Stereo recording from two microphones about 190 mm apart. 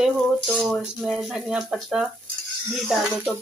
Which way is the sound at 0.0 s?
Centre (ahead or behind).